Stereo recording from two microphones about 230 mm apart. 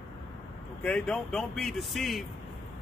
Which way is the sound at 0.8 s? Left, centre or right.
Centre.